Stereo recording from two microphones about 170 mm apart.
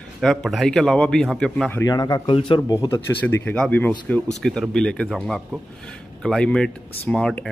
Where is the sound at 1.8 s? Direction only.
20° left (ahead or behind).